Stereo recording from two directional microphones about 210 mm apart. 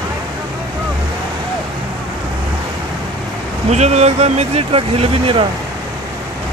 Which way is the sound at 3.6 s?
30° right (ahead or behind).